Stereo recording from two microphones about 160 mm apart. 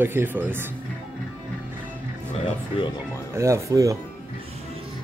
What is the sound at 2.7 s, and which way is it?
Speech, 35° left (ahead or behind).